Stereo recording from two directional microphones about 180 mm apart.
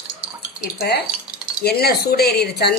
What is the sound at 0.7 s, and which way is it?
Speech, 65° left (ahead or behind).